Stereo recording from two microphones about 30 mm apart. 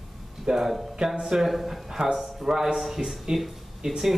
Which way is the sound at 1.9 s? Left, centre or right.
Centre.